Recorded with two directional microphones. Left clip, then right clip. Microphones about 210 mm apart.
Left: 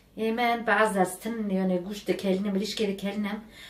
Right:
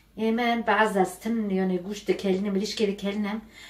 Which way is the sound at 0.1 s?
20° left (ahead or behind).